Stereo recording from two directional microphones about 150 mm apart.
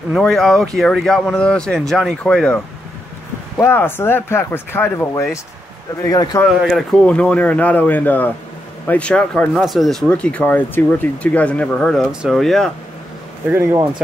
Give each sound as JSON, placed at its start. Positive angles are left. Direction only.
{"t": 0.1, "sound": "speech", "side_deg": 0}
{"t": 6.6, "sound": "speech", "side_deg": 5}
{"t": 13.5, "sound": "speech", "side_deg": -15}